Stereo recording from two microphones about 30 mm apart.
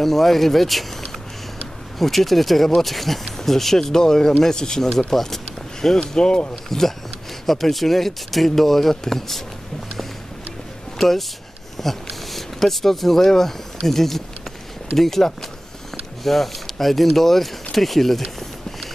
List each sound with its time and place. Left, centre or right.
0.0 s speech: centre
2.0 s speech: centre
5.9 s speech: left
6.7 s speech: centre
11.0 s speech: centre